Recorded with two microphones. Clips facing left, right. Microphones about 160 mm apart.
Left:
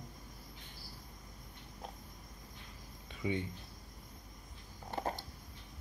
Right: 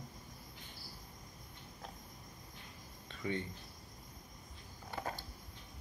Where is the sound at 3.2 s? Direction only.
10° left (ahead or behind).